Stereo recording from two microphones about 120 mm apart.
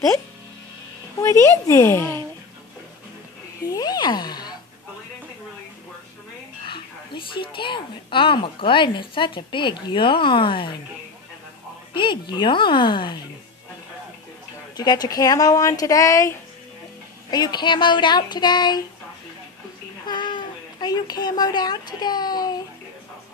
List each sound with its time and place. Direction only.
1.2 s speech: 25° left (ahead or behind)
3.6 s a sound: 30° left (ahead or behind)
6.6 s a woman's voice: 45° left (ahead or behind)
11.9 s child singing: 45° left (ahead or behind)
14.8 s speech: 35° left (ahead or behind)
17.3 s child singing: 35° left (ahead or behind)
20.1 s speech: 40° left (ahead or behind)